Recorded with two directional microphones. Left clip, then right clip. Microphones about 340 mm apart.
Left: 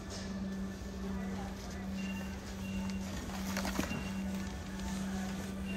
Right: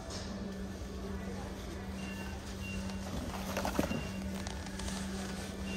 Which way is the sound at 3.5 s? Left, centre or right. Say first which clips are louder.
Right 2 dB; centre.